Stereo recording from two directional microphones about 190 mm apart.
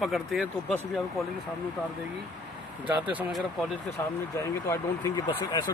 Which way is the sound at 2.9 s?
10° right (ahead or behind).